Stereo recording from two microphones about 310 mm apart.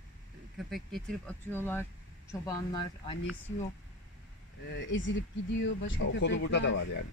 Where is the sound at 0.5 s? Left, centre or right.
Centre.